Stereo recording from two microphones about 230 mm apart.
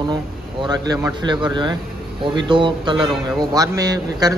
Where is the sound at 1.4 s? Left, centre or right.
Centre.